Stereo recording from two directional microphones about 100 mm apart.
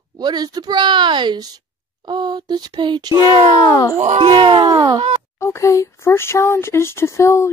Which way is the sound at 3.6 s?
35° left (ahead or behind).